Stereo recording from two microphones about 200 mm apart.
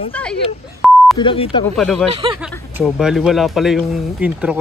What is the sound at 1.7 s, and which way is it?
Speech, centre (ahead or behind).